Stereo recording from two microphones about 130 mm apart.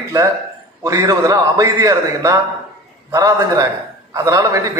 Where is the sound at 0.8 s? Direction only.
25° right (ahead or behind).